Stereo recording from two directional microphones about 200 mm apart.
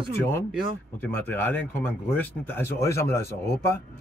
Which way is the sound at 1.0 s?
10° left (ahead or behind).